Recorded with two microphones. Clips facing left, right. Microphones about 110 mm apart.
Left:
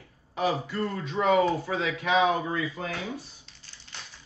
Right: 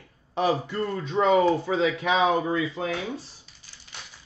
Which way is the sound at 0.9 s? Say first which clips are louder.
Right 3 dB; 25° right (ahead or behind).